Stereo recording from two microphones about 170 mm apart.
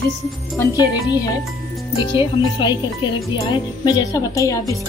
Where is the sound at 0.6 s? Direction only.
20° left (ahead or behind).